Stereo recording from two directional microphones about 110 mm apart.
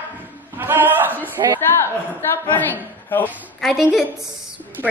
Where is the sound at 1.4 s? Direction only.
40° right (ahead or behind).